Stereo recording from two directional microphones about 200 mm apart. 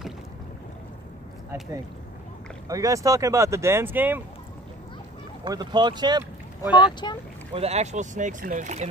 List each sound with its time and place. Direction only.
2.7 s speech: 15° right (ahead or behind)
5.4 s speech: 20° right (ahead or behind)
6.6 s speech: 20° left (ahead or behind)
7.5 s speech: 30° right (ahead or behind)